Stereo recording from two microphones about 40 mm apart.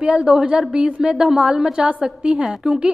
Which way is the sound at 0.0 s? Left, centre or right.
Right.